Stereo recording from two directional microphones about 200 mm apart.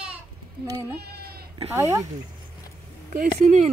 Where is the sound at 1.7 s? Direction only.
15° right (ahead or behind).